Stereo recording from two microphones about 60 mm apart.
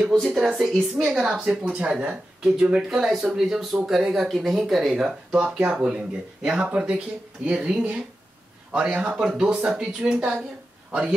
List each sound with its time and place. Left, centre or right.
0.0 s a woman's voice: centre
1.1 s speech: centre
5.5 s speech: centre